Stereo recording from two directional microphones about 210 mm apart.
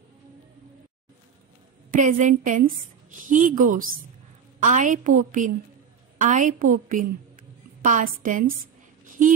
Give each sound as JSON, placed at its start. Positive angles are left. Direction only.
{"t": 1.9, "sound": "a woman's voice", "side_deg": -40}